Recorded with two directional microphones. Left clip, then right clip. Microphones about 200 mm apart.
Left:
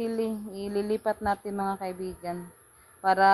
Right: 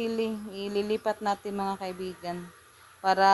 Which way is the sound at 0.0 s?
15° left (ahead or behind).